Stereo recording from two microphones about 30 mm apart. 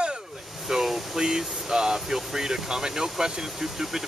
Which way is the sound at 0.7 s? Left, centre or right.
Centre.